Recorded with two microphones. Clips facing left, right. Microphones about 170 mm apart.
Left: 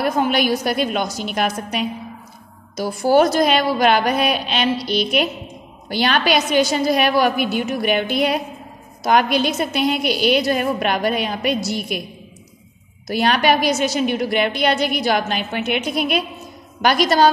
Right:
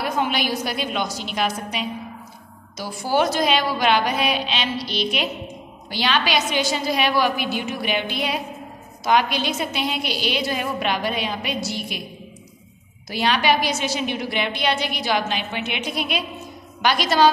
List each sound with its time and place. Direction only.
0.0 s a woman's voice: 45° left (ahead or behind)
13.1 s a woman's voice: 50° left (ahead or behind)